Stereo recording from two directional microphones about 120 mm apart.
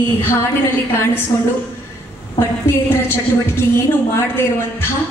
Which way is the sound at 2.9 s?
20° left (ahead or behind).